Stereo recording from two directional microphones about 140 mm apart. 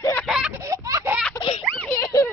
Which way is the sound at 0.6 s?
25° right (ahead or behind).